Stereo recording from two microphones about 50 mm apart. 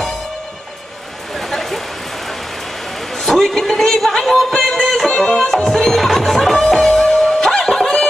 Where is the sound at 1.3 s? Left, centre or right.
Centre.